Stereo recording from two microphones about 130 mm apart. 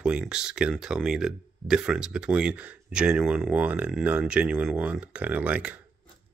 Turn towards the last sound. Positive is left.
turn(degrees=-10)  # may be behind; listen again after turning